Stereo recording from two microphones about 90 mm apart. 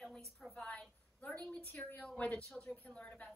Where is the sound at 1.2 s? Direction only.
15° left (ahead or behind).